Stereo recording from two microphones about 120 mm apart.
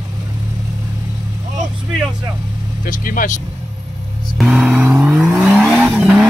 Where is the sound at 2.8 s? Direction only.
90° left.